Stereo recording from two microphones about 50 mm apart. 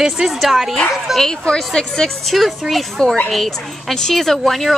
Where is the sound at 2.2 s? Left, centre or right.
Centre.